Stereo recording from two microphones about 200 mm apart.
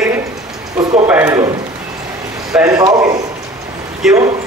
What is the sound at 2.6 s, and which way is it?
Speech, 15° right (ahead or behind).